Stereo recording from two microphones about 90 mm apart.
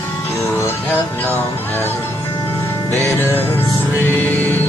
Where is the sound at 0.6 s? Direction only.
25° left (ahead or behind).